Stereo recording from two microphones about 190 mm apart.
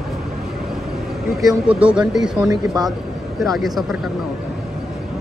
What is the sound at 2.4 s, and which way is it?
Speech, 20° right (ahead or behind).